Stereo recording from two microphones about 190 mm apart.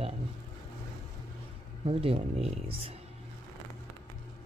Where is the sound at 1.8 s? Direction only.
30° right (ahead or behind).